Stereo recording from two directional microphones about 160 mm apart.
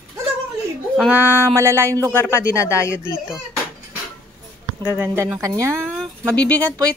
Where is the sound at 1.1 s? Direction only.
15° right (ahead or behind).